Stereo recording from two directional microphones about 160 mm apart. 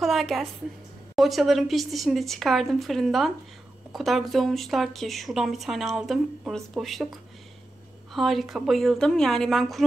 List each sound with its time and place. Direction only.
0.0 s speech: centre (ahead or behind)